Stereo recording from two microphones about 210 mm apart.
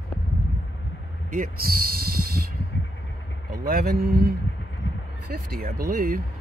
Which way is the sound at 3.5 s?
45° right (ahead or behind).